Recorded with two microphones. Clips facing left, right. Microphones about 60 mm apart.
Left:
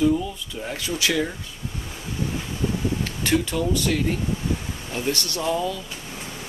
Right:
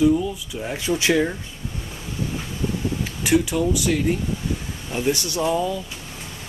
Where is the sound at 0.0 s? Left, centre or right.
Centre.